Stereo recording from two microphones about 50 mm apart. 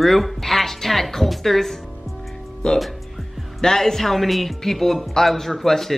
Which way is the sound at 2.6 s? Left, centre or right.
Centre.